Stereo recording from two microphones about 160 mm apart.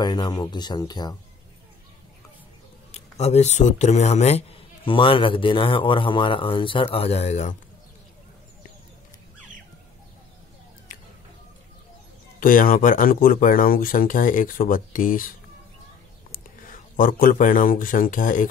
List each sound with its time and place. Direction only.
0.0 s speech: 25° left (ahead or behind)
2.9 s speech: 45° left (ahead or behind)
12.4 s speech: 60° left (ahead or behind)
16.9 s speech: 60° left (ahead or behind)